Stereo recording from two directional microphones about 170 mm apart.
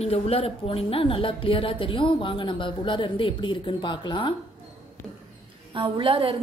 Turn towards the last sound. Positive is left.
turn(degrees=-30)  # may be behind; listen again after turning